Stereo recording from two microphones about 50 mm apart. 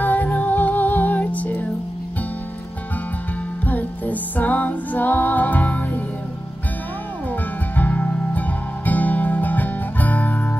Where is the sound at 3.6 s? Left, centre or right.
Left.